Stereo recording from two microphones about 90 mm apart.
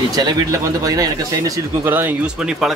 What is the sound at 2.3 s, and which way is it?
Speech, 5° right (ahead or behind).